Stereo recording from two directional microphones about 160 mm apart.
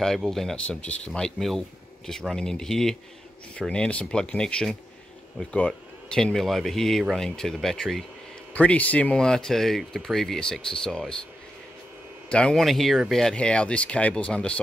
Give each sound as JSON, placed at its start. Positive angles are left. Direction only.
{"t": 0.0, "sound": "speech", "side_deg": 0}
{"t": 12.3, "sound": "speech", "side_deg": 5}